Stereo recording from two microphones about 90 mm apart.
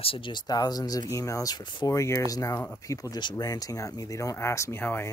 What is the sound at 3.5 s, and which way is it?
Speech, 40° left (ahead or behind).